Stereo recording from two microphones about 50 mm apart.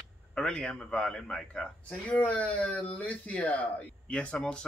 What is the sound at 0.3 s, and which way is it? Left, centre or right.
A man's voice, centre.